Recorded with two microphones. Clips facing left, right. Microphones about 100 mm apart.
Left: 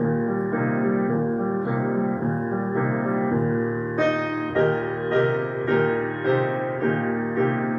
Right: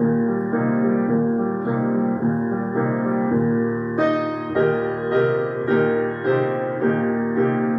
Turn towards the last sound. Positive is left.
turn(degrees=-5)  # may be behind; listen again after turning